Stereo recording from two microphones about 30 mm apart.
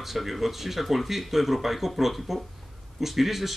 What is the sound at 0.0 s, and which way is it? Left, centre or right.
Speech, centre.